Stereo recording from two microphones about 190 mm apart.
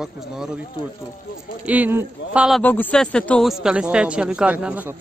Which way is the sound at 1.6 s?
10° right (ahead or behind).